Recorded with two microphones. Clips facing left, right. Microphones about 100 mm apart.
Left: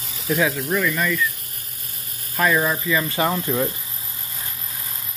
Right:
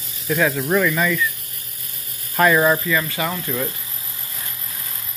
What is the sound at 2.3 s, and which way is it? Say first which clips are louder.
Speech: right 4 dB; 65° right (ahead or behind).